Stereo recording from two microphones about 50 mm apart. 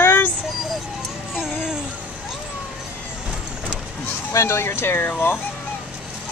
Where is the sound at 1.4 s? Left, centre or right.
Centre.